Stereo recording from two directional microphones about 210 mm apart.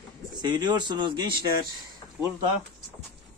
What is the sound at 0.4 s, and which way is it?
Speech, 20° right (ahead or behind).